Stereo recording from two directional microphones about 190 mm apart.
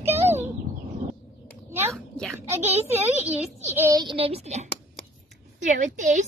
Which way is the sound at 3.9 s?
25° right (ahead or behind).